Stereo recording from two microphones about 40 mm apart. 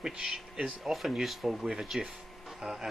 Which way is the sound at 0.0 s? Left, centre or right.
Centre.